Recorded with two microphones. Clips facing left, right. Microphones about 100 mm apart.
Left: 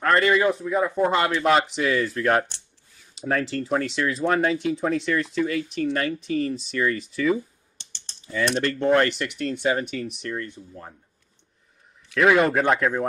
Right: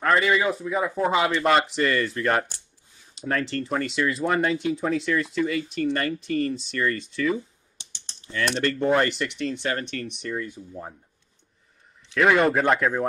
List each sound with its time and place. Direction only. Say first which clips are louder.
0.0 s speech: left 2 dB; centre (ahead or behind)
7.7 s typing: right 2 dB; 15° right (ahead or behind)
8.5 s speech: left 1 dB; centre (ahead or behind)
10.7 s speech: right 4 dB; 20° right (ahead or behind)
12.2 s speech: left 1 dB; centre (ahead or behind)